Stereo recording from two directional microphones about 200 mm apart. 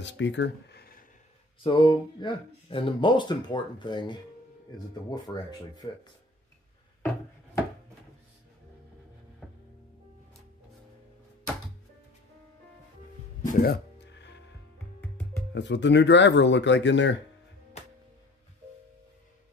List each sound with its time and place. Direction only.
0.0 s speech: 65° left (ahead or behind)
1.6 s speech: 25° left (ahead or behind)
9.4 s music: 5° right (ahead or behind)
13.4 s music: 45° left (ahead or behind); by 14.4 s 60° left (ahead or behind)
15.5 s speech: 60° left (ahead or behind)